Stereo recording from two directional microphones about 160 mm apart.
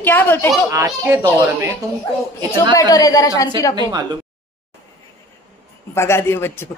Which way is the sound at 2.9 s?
20° left (ahead or behind).